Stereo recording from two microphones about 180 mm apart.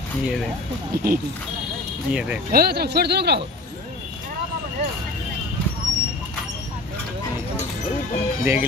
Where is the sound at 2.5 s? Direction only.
60° right (ahead or behind).